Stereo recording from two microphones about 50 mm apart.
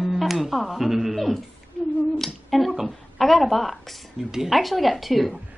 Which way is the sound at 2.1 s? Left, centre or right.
Centre.